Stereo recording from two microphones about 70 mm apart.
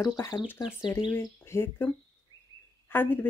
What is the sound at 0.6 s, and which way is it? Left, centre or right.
Speech, left.